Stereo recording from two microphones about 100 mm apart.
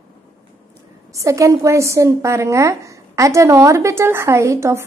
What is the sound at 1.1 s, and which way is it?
A woman's voice, 30° right (ahead or behind).